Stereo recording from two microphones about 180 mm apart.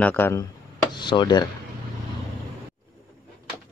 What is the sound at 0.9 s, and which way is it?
Speech, 25° left (ahead or behind).